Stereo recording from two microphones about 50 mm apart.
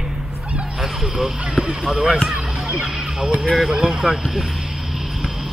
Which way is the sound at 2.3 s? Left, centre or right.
Centre.